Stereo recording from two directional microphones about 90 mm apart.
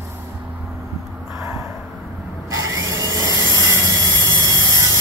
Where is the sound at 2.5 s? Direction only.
40° right (ahead or behind).